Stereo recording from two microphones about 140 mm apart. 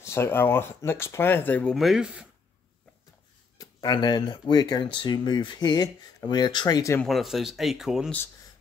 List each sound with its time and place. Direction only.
0.0 s speech: 15° left (ahead or behind); by 2.2 s 5° right (ahead or behind)
3.5 s speech: 30° left (ahead or behind)
7.1 s speech: centre (ahead or behind)